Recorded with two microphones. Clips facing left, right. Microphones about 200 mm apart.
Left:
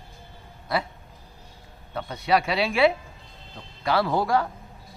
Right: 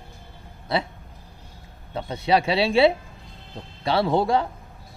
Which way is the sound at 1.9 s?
25° right (ahead or behind).